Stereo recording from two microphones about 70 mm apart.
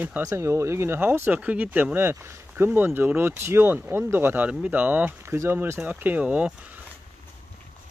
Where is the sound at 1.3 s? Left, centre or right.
Right.